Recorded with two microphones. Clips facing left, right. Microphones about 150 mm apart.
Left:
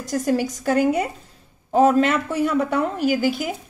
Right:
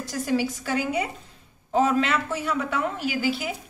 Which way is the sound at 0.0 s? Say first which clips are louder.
Left 4 dB; 45° left (ahead or behind).